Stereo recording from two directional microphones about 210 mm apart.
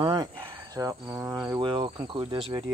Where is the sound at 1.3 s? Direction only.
15° right (ahead or behind).